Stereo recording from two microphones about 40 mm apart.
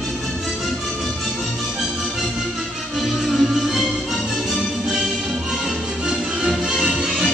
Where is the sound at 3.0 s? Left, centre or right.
Centre.